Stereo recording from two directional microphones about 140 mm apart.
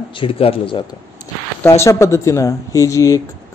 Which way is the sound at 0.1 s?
40° left (ahead or behind).